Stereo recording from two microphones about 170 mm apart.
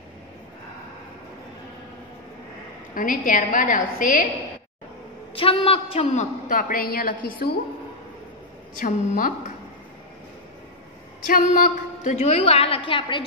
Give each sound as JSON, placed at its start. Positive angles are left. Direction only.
{"t": 2.9, "sound": "a woman's voice", "side_deg": 50}
{"t": 5.3, "sound": "a woman's voice", "side_deg": 30}
{"t": 8.8, "sound": "a woman's voice", "side_deg": 55}
{"t": 11.2, "sound": "a woman's voice", "side_deg": 55}